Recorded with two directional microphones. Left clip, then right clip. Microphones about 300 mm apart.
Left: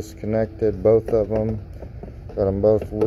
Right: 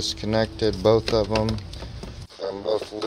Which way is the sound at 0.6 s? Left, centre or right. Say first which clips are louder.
Left 3 dB; right.